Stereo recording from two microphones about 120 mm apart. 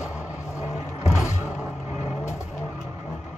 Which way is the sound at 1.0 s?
25° left (ahead or behind).